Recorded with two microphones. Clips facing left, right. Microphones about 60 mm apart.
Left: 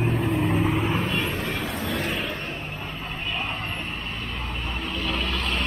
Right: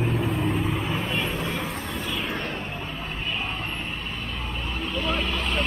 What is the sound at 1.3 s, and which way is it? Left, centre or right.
Vehicle, left.